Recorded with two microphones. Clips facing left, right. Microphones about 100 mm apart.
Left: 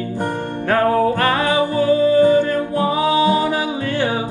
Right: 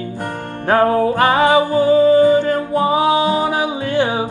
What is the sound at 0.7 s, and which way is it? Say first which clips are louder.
Music: right 2 dB; 15° right (ahead or behind).